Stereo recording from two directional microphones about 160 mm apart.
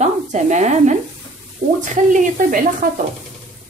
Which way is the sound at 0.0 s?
45° right (ahead or behind).